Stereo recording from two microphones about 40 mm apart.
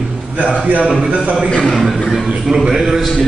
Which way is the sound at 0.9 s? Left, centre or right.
Right.